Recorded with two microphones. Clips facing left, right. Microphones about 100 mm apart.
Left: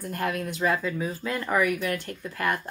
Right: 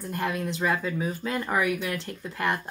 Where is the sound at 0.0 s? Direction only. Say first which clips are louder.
Even; 25° right (ahead or behind).